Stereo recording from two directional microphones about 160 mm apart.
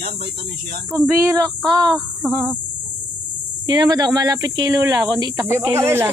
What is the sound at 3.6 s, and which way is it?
A woman's voice, 25° right (ahead or behind).